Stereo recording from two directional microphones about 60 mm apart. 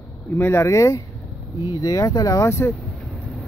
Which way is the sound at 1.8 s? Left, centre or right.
Left.